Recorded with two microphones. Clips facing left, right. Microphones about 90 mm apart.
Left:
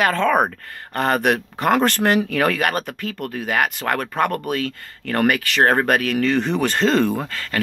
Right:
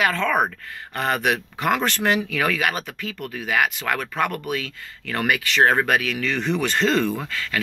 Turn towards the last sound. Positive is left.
turn(degrees=40)  # may be behind; listen again after turning